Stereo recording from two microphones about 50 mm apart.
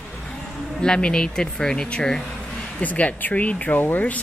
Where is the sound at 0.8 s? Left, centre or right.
Centre.